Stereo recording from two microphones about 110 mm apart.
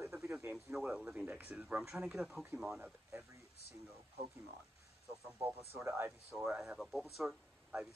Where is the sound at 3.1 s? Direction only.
25° right (ahead or behind).